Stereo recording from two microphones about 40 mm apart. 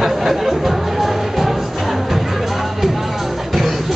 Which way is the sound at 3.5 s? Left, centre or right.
Centre.